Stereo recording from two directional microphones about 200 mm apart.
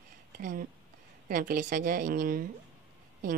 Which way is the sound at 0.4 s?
40° right (ahead or behind).